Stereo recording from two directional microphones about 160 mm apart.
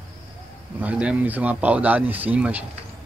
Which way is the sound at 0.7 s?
10° right (ahead or behind).